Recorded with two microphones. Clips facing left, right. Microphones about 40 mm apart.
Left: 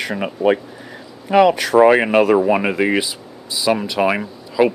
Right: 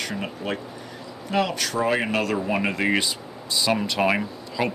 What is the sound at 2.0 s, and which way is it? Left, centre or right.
Speech, left.